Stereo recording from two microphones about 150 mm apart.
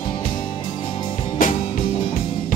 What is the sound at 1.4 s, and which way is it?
Music, 65° left (ahead or behind).